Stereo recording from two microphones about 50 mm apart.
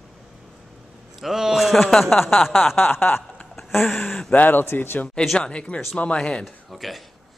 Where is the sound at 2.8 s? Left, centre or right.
Left.